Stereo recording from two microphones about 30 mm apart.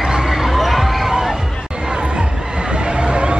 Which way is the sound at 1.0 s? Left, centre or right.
Centre.